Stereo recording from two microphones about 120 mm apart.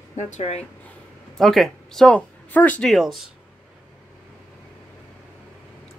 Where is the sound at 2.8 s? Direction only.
Centre (ahead or behind).